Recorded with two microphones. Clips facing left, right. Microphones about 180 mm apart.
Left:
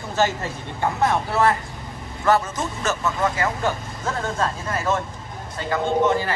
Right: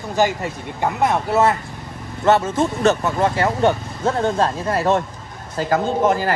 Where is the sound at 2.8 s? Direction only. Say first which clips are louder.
Right 4 dB; 35° right (ahead or behind).